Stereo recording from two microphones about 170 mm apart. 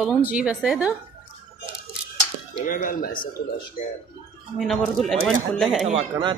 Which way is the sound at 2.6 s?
55° left (ahead or behind).